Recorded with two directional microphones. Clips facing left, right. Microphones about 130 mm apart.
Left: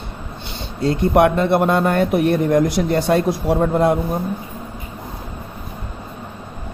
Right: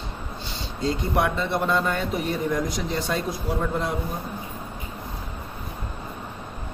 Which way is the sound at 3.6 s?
55° left (ahead or behind).